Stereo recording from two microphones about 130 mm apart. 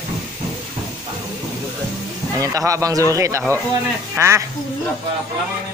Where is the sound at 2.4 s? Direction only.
25° right (ahead or behind).